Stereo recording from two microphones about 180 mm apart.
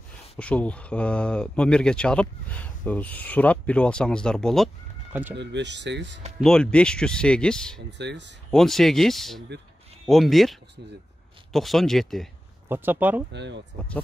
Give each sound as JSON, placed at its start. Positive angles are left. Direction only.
{"t": 0.4, "sound": "speech", "side_deg": 5}
{"t": 5.4, "sound": "speech", "side_deg": -75}
{"t": 6.4, "sound": "speech", "side_deg": 5}
{"t": 8.0, "sound": "speech", "side_deg": -75}
{"t": 8.5, "sound": "speech", "side_deg": 0}
{"t": 12.6, "sound": "speech", "side_deg": -10}
{"t": 13.3, "sound": "speech", "side_deg": -75}